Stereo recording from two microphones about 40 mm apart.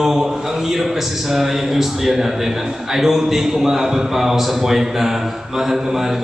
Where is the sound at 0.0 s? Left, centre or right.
Centre.